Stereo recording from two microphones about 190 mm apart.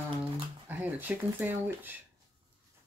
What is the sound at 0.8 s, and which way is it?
Speech, 10° right (ahead or behind).